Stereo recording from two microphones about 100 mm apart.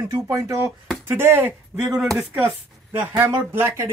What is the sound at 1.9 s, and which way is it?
Speech, 5° right (ahead or behind).